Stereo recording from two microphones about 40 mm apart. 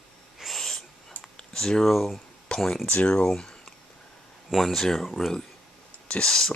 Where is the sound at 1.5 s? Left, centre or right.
Centre.